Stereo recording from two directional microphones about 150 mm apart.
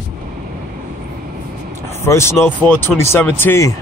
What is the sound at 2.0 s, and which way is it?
Speech, 15° left (ahead or behind).